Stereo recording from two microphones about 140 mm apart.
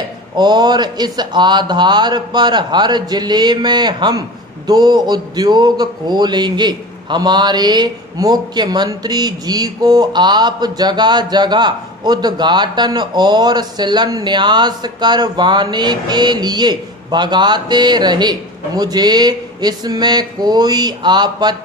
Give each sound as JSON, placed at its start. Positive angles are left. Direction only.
{"t": 0.4, "sound": "speech", "side_deg": -30}